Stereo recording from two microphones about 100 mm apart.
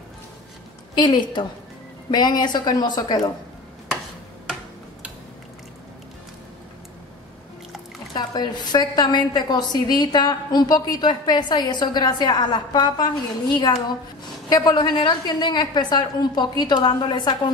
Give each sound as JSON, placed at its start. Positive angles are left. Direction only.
{"t": 0.9, "sound": "a woman's voice", "side_deg": 45}
{"t": 8.1, "sound": "a woman's voice", "side_deg": 45}